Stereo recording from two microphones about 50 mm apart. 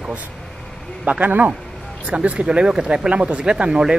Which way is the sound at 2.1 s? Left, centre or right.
Right.